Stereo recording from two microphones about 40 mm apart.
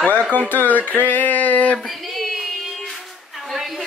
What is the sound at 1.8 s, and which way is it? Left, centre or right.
Child singing, centre.